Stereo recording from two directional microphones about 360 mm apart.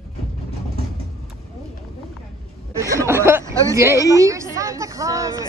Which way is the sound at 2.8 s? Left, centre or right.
Centre.